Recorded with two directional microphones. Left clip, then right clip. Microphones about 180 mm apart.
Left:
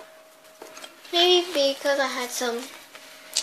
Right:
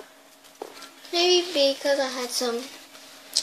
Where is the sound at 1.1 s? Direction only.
5° right (ahead or behind).